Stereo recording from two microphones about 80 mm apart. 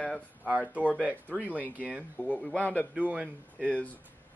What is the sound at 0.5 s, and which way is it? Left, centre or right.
Speech, centre.